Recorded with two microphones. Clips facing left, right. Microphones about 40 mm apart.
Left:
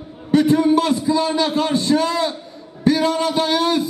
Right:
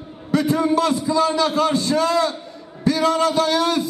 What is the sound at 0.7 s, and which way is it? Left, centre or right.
A man's voice, left.